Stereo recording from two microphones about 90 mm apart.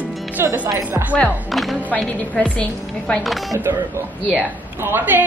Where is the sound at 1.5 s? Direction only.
Centre (ahead or behind).